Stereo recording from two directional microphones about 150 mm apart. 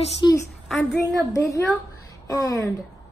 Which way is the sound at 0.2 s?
30° left (ahead or behind).